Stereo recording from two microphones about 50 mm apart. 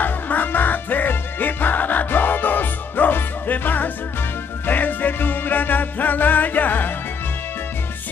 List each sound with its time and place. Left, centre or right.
0.0 s music: left